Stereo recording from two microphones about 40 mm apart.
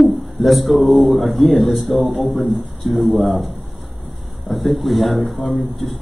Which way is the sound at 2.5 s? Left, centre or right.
Centre.